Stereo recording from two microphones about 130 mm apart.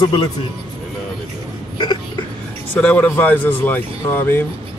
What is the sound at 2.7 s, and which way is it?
Speech, 10° left (ahead or behind).